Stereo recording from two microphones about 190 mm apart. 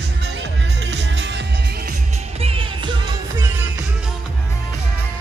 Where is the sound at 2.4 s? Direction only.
25° right (ahead or behind).